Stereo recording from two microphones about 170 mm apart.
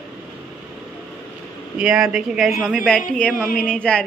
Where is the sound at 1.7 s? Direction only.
5° right (ahead or behind).